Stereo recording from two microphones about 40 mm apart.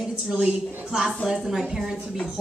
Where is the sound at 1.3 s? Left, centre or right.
Centre.